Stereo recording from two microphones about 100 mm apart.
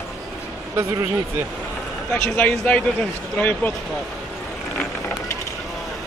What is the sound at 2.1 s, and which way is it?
A man's voice, 10° left (ahead or behind).